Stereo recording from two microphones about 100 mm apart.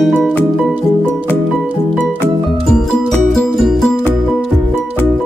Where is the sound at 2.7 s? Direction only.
5° left (ahead or behind).